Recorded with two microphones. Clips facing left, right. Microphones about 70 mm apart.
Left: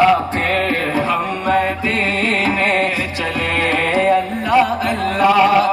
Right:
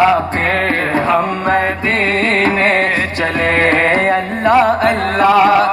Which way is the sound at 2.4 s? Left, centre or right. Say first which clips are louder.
Right 2 dB; right.